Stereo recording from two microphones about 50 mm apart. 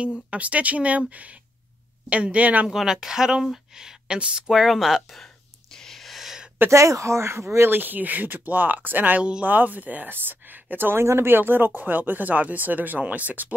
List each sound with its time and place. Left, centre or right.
0.3 s speech: right
2.7 s speech: centre
4.5 s speech: centre
5.1 s whispering: centre
6.7 s speech: right
7.8 s speech: right
11.0 s speech: right